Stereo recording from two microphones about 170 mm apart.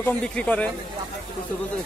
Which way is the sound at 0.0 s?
10° left (ahead or behind).